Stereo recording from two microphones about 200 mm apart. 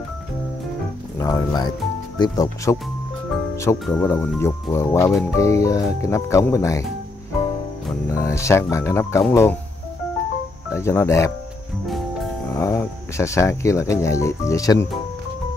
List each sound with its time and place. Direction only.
1.2 s speech: 20° left (ahead or behind)
3.8 s speech: 5° left (ahead or behind)
8.1 s speech: 15° left (ahead or behind)
10.7 s speech: 15° left (ahead or behind)
12.5 s speech: 15° left (ahead or behind)